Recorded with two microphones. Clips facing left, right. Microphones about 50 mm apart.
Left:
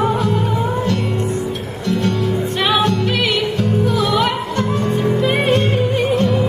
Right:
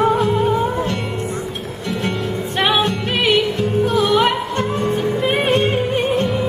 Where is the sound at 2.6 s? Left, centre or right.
Right.